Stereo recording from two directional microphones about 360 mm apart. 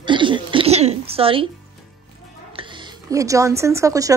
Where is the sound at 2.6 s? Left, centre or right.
Centre.